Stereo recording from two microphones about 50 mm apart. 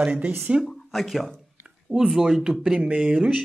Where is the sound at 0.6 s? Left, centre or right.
Centre.